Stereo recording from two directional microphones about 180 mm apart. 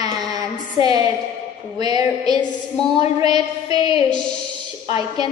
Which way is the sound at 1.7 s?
20° right (ahead or behind).